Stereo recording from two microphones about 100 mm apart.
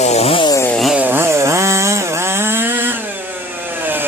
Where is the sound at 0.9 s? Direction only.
20° right (ahead or behind).